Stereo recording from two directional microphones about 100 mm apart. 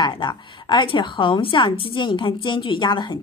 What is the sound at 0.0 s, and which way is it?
A woman's voice, 50° left (ahead or behind).